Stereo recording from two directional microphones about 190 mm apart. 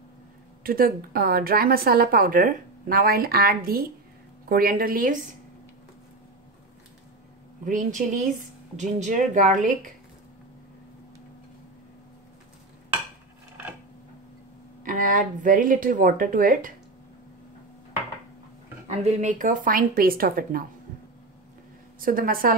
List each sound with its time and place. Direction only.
0.7 s a woman's voice: 50° right (ahead or behind)
7.6 s speech: 45° right (ahead or behind)
14.8 s a woman's voice: 45° right (ahead or behind)
18.9 s a woman's voice: 40° right (ahead or behind)
22.0 s a woman's voice: 50° right (ahead or behind)